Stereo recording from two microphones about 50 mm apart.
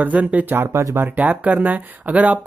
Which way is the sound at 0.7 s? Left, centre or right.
Right.